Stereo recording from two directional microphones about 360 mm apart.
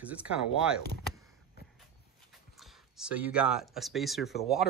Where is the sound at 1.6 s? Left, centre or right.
Left.